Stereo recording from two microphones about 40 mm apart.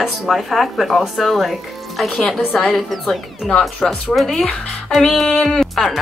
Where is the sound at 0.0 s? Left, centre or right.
Centre.